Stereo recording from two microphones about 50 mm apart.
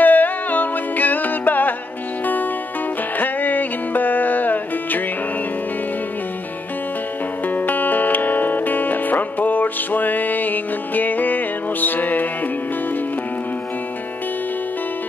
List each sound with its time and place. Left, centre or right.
0.0 s music: left
3.2 s music: left
7.4 s music: left